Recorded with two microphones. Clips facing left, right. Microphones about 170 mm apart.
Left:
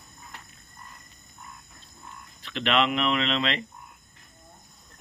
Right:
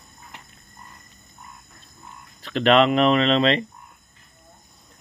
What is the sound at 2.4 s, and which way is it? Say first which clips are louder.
Speech: right 8 dB; 40° right (ahead or behind).